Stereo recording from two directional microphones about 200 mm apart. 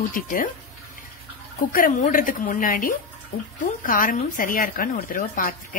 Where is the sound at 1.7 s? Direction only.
40° left (ahead or behind).